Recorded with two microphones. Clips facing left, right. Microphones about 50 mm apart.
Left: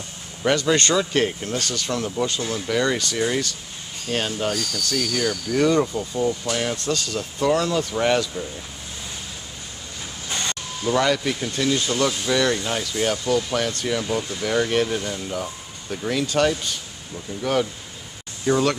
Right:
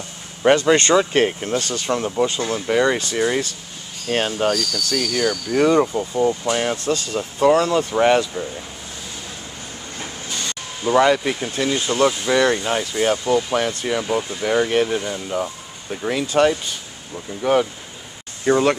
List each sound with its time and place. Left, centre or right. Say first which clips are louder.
0.4 s speech: right 5 dB; right
4.9 s speech: right 3 dB; centre
10.8 s speech: right 5 dB; right